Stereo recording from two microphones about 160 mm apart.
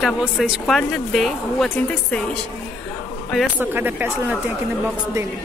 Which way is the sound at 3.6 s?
10° right (ahead or behind).